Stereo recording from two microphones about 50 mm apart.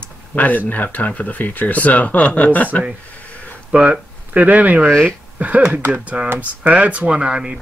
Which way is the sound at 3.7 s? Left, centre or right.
Right.